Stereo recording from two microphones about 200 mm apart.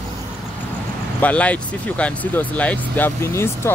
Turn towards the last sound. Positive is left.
turn(degrees=10)  # may be behind; listen again after turning